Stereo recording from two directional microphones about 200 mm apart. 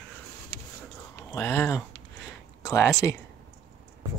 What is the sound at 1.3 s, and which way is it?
Speech, 10° left (ahead or behind).